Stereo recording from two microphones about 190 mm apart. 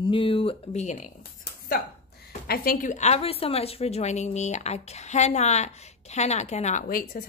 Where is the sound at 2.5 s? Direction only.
45° left (ahead or behind).